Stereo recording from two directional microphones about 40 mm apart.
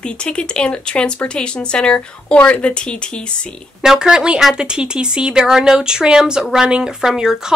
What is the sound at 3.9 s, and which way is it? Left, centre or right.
Speech, right.